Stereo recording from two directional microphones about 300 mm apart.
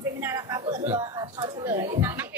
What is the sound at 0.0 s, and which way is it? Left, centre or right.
A woman's voice, centre.